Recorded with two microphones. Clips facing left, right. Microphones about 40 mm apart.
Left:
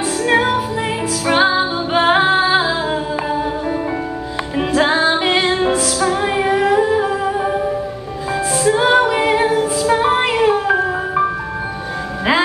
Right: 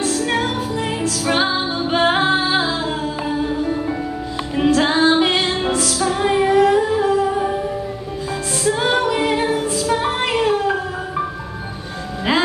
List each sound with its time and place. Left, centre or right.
0.0 s music: centre
4.6 s music: centre
8.6 s music: centre